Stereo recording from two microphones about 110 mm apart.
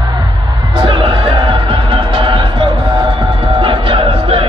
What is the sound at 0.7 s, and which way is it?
Music, 45° right (ahead or behind).